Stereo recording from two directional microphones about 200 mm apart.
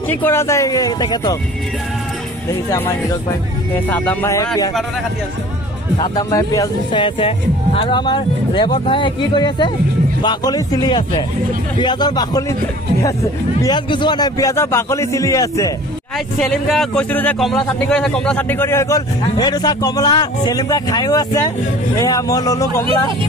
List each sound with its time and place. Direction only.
0.1 s speech: 10° left (ahead or behind)
2.7 s speech: 15° left (ahead or behind)
5.9 s speech: 20° left (ahead or behind)
13.6 s speech: 20° left (ahead or behind)
16.3 s speech: centre (ahead or behind); by 22.7 s 15° left (ahead or behind)